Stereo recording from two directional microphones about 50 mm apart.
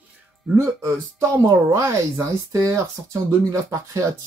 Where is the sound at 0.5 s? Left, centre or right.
Right.